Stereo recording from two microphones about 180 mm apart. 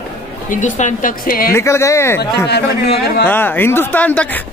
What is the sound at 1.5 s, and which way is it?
Speech, 15° left (ahead or behind).